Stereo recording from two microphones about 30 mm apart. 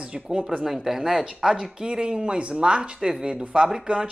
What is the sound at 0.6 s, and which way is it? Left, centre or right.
Speech, centre.